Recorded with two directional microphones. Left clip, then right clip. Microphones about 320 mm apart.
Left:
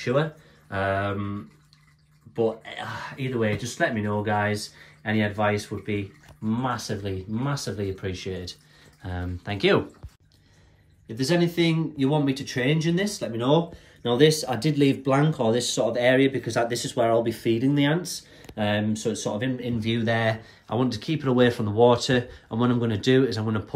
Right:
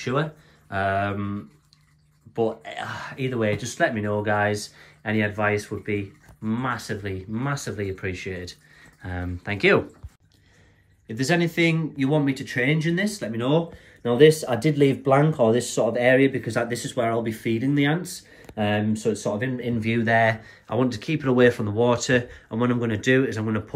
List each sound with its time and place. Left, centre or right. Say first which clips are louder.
0.0 s speech: left 1 dB; centre
11.1 s speech: right 1 dB; centre
14.5 s speech: right 3 dB; right
15.1 s speech: right 3 dB; centre